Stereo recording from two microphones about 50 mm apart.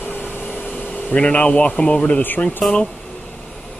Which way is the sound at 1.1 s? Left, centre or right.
Left.